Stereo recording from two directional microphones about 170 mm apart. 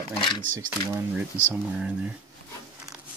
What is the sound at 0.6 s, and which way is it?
Speech, 20° right (ahead or behind).